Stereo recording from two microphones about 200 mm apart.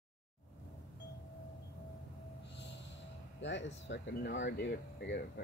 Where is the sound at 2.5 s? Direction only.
60° left (ahead or behind).